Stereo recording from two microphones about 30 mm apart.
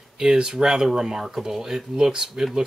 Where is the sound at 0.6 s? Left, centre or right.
Right.